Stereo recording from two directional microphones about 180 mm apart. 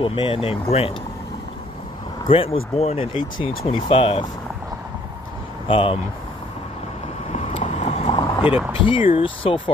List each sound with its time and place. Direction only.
0.0 s speech: 30° left (ahead or behind)
2.2 s speech: 30° left (ahead or behind)
5.7 s speech: 30° left (ahead or behind)
7.3 s vehicle: 40° left (ahead or behind)
8.8 s speech: 30° left (ahead or behind)